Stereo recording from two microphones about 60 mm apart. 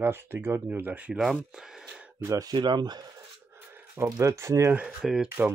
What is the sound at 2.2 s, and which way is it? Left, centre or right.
Speech, right.